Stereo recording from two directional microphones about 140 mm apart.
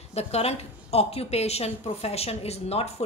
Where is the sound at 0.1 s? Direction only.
45° left (ahead or behind).